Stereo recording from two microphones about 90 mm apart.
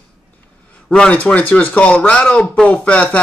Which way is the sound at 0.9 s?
15° left (ahead or behind).